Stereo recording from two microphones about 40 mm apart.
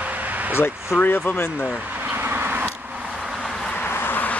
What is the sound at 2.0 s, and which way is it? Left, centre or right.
Vehicle, right.